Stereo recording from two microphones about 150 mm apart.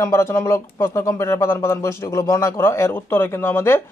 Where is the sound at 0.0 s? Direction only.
20° left (ahead or behind).